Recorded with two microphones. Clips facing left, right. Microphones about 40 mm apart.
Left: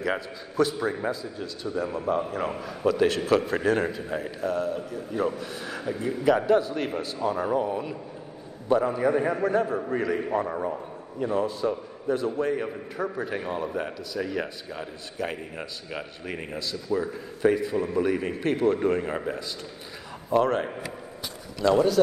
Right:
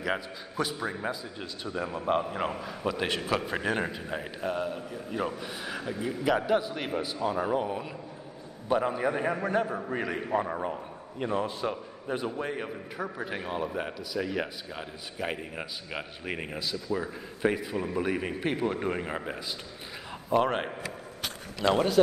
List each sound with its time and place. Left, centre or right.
0.0 s a man's voice: centre
1.2 s a man's voice: right
5.1 s a man's voice: centre
8.6 s a man's voice: centre
9.4 s a man's voice: right
10.1 s a man's voice: centre
11.2 s a man's voice: right
11.7 s a man's voice: centre
12.6 s a man's voice: centre
20.2 s a man's voice: right
21.7 s speech: right